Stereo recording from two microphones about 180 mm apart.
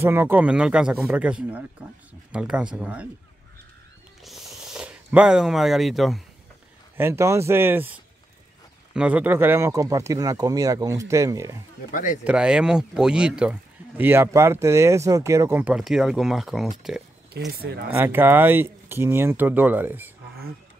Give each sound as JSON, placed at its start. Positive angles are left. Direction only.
{"t": 0.0, "sound": "speech", "side_deg": -15}
{"t": 4.2, "sound": "a sound", "side_deg": 0}
{"t": 7.0, "sound": "speech", "side_deg": -15}
{"t": 11.9, "sound": "speech", "side_deg": 45}
{"t": 12.3, "sound": "speech", "side_deg": -5}
{"t": 17.6, "sound": "speech", "side_deg": -60}
{"t": 17.9, "sound": "speech", "side_deg": -10}